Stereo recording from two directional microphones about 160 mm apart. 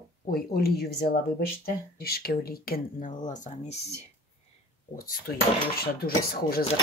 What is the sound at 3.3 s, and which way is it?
Speech, 50° left (ahead or behind).